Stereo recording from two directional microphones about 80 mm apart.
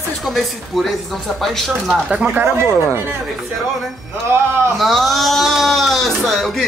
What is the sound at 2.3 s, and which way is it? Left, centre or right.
Speech, right.